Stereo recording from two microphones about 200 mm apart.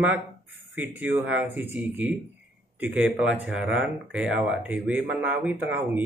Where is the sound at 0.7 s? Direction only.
10° right (ahead or behind).